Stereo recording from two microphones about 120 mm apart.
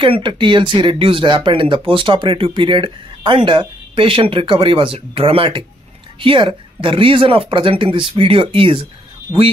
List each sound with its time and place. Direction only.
0.0 s speech: 45° right (ahead or behind)